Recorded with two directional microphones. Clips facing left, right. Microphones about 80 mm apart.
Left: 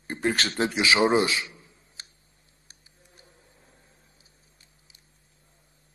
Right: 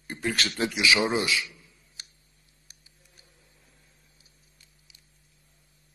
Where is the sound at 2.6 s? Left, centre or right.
Left.